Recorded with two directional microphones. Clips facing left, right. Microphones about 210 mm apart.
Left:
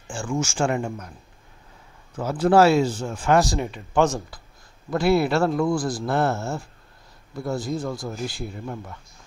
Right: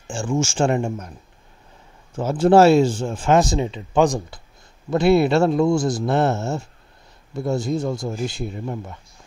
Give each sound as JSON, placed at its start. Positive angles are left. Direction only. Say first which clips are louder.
{"t": 0.1, "sound": "speech", "louder": "right 4 dB", "side_deg": -25}
{"t": 2.1, "sound": "speech", "louder": "right 3 dB", "side_deg": -25}